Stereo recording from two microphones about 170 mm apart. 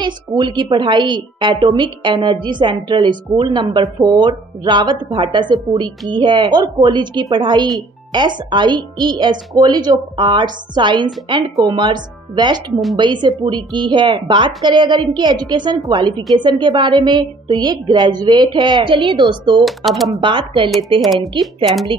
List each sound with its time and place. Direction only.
0.0 s a woman's voice: 25° right (ahead or behind)
19.6 s speech: centre (ahead or behind)
20.2 s a woman's voice: 30° right (ahead or behind)
21.0 s speech: centre (ahead or behind)